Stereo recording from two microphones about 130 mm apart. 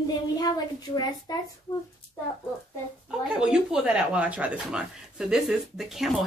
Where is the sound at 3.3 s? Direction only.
5° right (ahead or behind).